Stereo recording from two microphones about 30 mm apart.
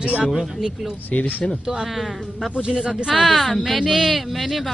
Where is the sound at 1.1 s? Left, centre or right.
Left.